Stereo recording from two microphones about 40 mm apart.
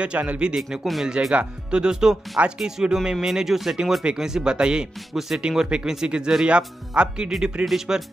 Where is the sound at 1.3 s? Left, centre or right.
Right; by 3.7 s centre.